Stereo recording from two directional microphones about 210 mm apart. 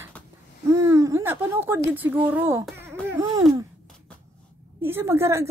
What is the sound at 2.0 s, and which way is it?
A woman's voice, 10° right (ahead or behind).